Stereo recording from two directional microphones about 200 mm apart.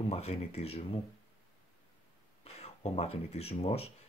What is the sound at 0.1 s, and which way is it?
Speech, 30° left (ahead or behind).